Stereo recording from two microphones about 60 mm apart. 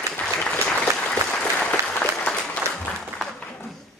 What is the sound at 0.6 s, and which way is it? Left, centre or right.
Applause, centre.